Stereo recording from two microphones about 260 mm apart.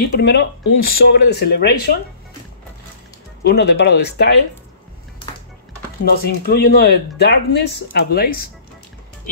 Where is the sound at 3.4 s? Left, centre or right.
Left.